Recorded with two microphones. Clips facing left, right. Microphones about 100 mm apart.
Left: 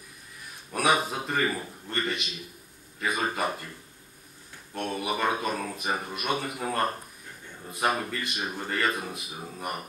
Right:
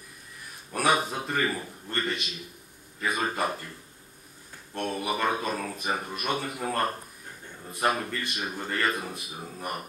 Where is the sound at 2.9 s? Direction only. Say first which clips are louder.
Even; 15° left (ahead or behind).